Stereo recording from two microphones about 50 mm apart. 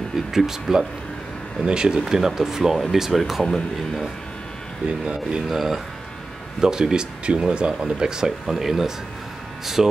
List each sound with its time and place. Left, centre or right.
0.3 s speech: centre
4.8 s speech: right
5.5 s speech: centre